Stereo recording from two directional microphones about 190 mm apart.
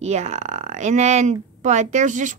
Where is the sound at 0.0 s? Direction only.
35° right (ahead or behind).